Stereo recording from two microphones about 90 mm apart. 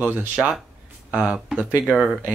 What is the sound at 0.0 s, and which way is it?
Speech, 20° right (ahead or behind).